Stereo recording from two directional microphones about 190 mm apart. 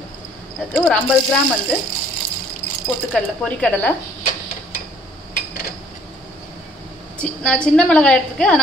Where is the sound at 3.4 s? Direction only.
10° left (ahead or behind).